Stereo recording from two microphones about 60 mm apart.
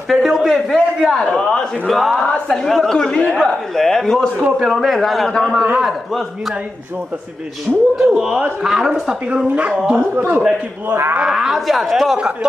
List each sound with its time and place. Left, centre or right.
0.1 s a sound: centre
1.0 s a man's voice: centre
3.7 s a man's voice: centre
4.4 s a man's voice: centre
5.6 s speech: centre
8.0 s speech: centre
9.8 s speech: right
11.2 s a man's voice: centre